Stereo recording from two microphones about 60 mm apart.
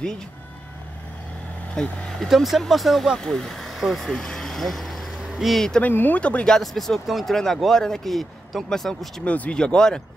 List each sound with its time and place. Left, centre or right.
1.8 s speech: centre
2.2 s speech: centre
4.2 s vehicle: centre
5.2 s vehicle: centre
5.5 s speech: centre
5.8 s speech: left
6.4 s speech: centre
9.2 s speech: left